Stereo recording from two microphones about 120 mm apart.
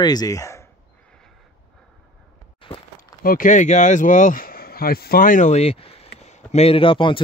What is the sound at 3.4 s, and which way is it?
Speech, 90° left.